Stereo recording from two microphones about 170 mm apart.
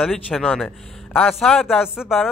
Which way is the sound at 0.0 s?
Centre (ahead or behind).